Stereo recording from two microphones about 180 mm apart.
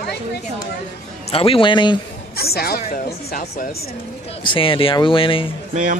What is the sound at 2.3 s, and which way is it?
Speech, 60° left (ahead or behind).